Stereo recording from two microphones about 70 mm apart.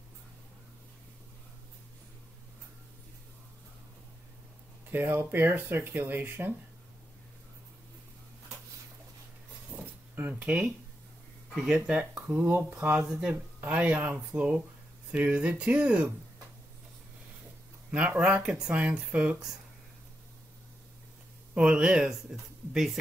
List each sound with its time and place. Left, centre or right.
4.9 s speech: right
9.8 s a sound: right
11.5 s speech: centre
17.9 s speech: centre
21.5 s speech: centre